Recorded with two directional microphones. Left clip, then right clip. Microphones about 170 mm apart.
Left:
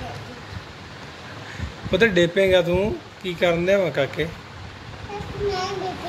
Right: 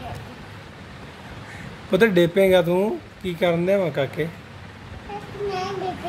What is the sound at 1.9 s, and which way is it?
Speech, 25° right (ahead or behind).